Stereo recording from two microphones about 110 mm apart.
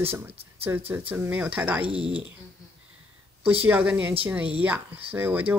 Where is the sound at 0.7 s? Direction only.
20° right (ahead or behind).